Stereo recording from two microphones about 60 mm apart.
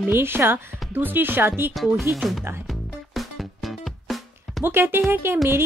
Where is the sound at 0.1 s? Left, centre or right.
Right.